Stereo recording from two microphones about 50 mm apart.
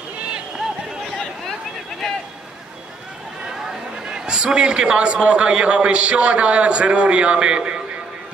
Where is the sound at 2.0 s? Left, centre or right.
Centre.